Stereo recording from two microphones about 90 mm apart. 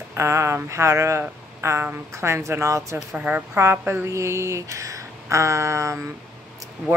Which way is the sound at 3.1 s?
15° right (ahead or behind).